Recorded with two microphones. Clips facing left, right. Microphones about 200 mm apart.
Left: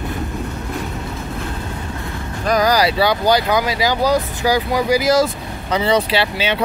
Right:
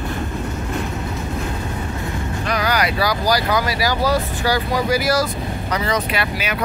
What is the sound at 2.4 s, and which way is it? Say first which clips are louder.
Speech: left 6 dB; 40° left (ahead or behind).